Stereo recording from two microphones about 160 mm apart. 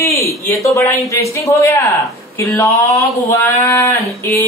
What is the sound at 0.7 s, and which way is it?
Speech, 20° left (ahead or behind).